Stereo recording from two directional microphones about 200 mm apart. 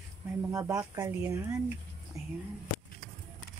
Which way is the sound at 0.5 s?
15° right (ahead or behind).